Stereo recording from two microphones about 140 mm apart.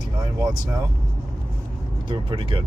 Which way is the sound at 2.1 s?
40° right (ahead or behind).